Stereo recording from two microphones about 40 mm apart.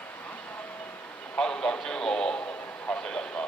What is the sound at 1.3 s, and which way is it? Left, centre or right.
Speech, left.